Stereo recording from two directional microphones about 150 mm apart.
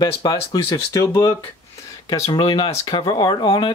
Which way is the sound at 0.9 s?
20° left (ahead or behind).